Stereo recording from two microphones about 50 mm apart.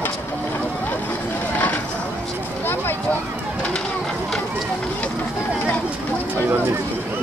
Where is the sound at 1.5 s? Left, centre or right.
Left.